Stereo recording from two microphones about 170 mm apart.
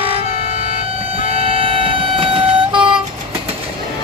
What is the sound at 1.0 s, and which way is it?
Vehicle, 35° right (ahead or behind).